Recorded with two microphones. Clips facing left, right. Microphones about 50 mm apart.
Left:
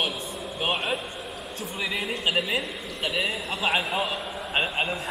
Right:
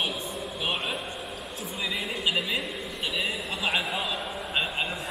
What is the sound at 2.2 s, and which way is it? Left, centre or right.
A man's voice, left.